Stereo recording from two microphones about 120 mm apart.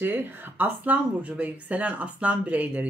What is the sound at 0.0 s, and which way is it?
Speech, 15° right (ahead or behind).